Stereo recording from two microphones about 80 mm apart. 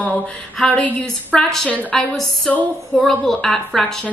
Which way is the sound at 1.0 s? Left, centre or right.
Centre.